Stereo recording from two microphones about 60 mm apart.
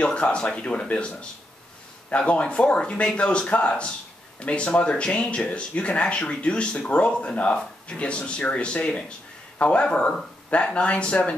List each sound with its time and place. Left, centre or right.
0.0 s speech: centre